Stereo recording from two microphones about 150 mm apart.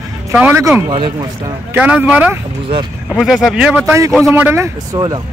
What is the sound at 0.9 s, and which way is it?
Speech, 35° right (ahead or behind).